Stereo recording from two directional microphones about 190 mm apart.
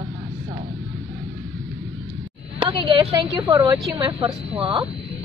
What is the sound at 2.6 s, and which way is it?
A woman's voice, 25° right (ahead or behind).